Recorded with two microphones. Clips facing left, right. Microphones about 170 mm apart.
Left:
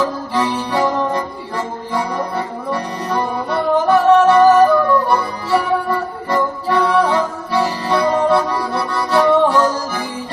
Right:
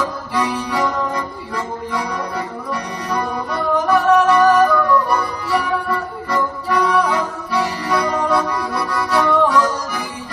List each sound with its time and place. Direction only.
0.3 s music: 25° left (ahead or behind)
2.7 s music: 25° left (ahead or behind)